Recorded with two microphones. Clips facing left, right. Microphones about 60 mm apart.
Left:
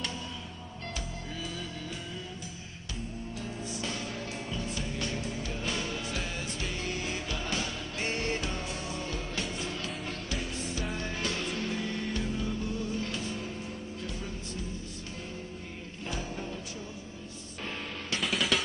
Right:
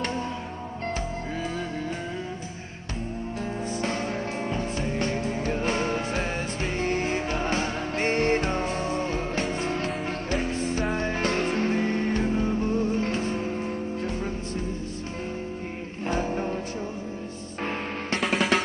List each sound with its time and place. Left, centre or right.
3.7 s music: right
16.1 s music: right
18.2 s drum: right